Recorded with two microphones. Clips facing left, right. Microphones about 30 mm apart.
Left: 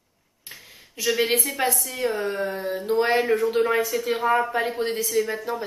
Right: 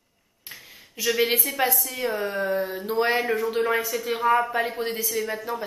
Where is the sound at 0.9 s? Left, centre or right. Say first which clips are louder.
Left 1 dB; centre.